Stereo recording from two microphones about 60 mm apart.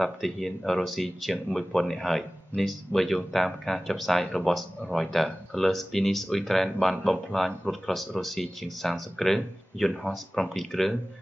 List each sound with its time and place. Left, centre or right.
0.0 s speech: centre